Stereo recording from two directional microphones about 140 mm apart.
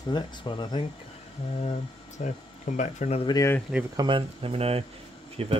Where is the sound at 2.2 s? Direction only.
60° left (ahead or behind).